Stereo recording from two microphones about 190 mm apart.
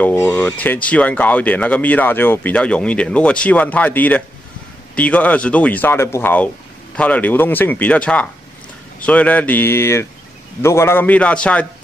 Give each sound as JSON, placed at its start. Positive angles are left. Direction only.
{"t": 0.0, "sound": "speech", "side_deg": 15}